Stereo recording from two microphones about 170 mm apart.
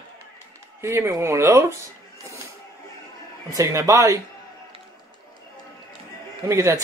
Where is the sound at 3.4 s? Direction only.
20° right (ahead or behind).